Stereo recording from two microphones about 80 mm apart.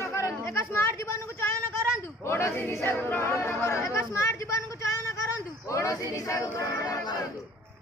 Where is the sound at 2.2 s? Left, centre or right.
Left.